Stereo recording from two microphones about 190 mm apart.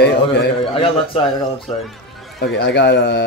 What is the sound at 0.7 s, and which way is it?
Speech, 30° left (ahead or behind).